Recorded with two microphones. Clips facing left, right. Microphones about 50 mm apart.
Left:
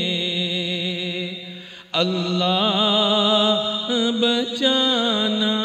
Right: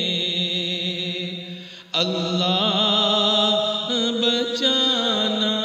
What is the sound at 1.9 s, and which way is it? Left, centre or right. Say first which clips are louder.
Mantra: left 2 dB; centre.